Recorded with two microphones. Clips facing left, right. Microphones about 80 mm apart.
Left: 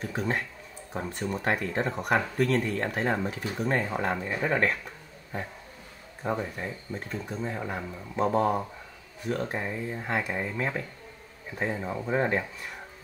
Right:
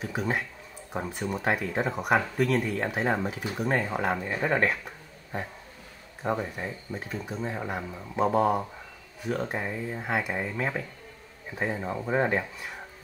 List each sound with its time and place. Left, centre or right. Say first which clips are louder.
0.0 s speech: even; centre